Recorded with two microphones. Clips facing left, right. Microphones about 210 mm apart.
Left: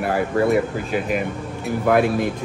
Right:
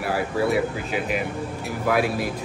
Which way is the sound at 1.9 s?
5° right (ahead or behind).